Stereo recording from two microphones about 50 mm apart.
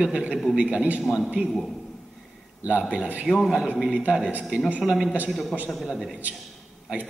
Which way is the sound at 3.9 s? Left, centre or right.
Right.